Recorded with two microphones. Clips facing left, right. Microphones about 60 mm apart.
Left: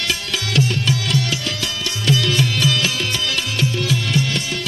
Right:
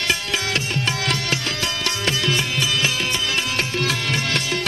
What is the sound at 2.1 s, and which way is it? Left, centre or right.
Music, right.